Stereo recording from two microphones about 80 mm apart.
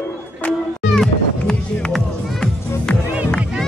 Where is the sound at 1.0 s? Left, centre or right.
Centre.